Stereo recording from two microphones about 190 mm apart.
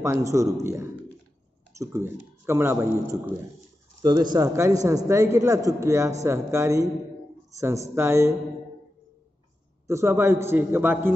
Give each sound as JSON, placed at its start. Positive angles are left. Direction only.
{"t": 0.0, "sound": "speech", "side_deg": -15}
{"t": 9.8, "sound": "speech", "side_deg": -15}